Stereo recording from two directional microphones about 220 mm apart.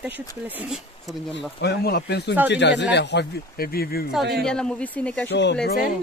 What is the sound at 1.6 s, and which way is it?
Speech, 45° left (ahead or behind).